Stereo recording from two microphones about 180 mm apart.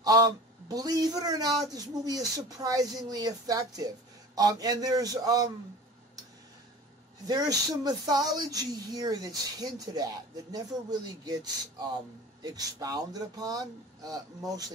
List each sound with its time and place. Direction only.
0.0 s speech: 20° right (ahead or behind)
7.2 s speech: 20° right (ahead or behind)